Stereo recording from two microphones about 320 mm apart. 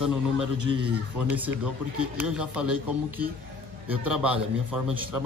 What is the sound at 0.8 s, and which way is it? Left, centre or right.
A man's voice, centre.